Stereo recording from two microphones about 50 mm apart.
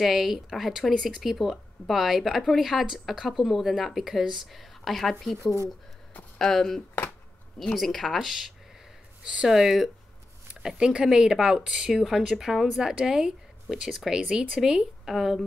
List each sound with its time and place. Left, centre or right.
0.0 s speech: centre
4.5 s speech: centre
6.3 s speech: centre
9.2 s speech: right
9.5 s speech: centre
15.0 s speech: centre